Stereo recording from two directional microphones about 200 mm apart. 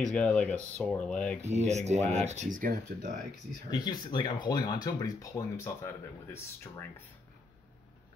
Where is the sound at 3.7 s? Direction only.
20° left (ahead or behind).